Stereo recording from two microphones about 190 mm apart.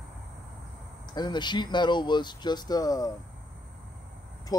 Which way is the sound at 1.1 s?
20° left (ahead or behind).